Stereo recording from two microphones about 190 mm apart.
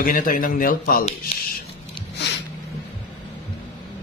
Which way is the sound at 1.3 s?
35° left (ahead or behind).